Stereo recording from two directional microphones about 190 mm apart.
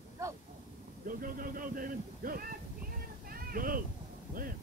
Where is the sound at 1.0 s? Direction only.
50° right (ahead or behind).